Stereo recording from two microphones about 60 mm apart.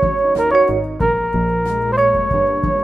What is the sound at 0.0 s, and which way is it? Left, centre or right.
Music, centre.